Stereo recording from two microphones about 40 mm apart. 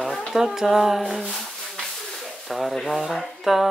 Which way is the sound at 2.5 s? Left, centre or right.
Centre.